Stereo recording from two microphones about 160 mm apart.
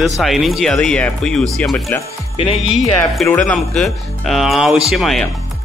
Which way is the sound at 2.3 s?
40° left (ahead or behind).